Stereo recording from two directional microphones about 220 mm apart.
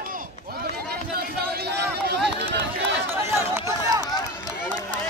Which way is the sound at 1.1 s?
45° right (ahead or behind).